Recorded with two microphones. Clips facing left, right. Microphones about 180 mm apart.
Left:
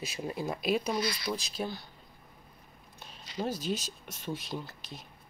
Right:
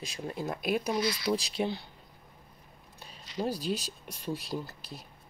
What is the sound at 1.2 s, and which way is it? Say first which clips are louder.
Speech: right 5 dB; 25° right (ahead or behind).